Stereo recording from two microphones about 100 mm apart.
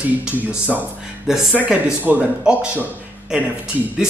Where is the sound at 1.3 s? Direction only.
5° right (ahead or behind).